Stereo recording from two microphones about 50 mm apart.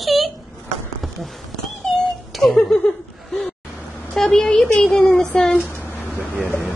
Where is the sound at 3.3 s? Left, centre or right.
Centre.